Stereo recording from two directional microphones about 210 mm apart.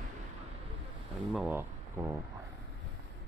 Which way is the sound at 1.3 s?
5° right (ahead or behind).